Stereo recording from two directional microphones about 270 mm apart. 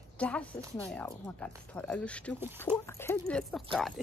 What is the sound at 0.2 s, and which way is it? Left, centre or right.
Speech, centre.